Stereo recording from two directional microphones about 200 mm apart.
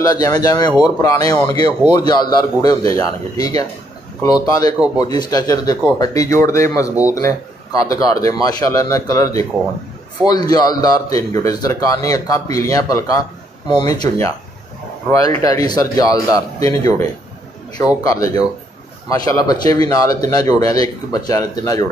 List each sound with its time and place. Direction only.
0.0 s a man's voice: 20° left (ahead or behind)
15.4 s a man's voice: 20° left (ahead or behind)